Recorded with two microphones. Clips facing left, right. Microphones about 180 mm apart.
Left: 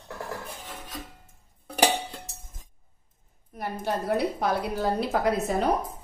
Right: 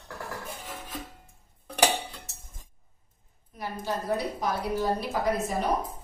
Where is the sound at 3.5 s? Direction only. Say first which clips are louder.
Left 4 dB; 55° left (ahead or behind).